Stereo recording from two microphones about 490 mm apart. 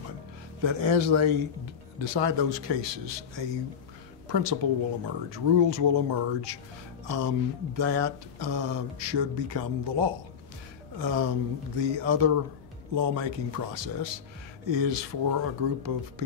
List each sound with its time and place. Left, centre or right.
0.6 s a man's voice: right